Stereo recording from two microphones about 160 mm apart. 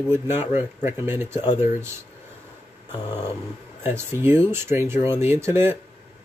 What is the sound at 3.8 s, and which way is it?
Speech, 15° right (ahead or behind).